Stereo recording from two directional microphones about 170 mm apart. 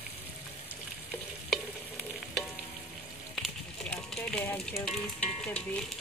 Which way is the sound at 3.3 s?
Centre (ahead or behind).